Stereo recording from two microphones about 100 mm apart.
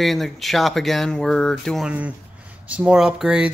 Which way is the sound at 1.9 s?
15° right (ahead or behind).